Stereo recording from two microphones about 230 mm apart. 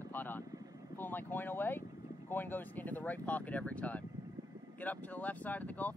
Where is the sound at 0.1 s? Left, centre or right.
Centre.